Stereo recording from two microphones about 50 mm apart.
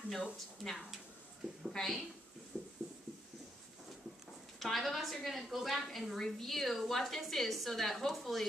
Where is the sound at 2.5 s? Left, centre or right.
Centre.